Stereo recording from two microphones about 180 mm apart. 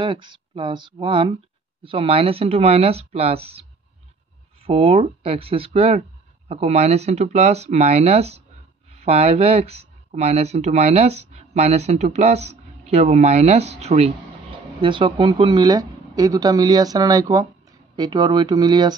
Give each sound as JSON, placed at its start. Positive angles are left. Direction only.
{"t": 0.0, "sound": "speech", "side_deg": -25}
{"t": 4.6, "sound": "speech", "side_deg": -35}